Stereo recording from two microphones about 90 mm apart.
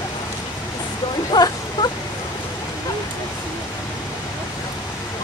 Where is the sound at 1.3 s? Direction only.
50° left (ahead or behind).